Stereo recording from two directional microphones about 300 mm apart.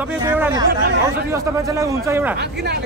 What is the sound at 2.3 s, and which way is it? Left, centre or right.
Speech, right.